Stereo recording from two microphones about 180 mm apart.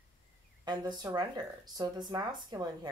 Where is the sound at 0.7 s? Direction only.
25° right (ahead or behind).